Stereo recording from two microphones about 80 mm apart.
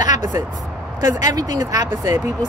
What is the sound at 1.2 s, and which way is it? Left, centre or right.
Speech, right.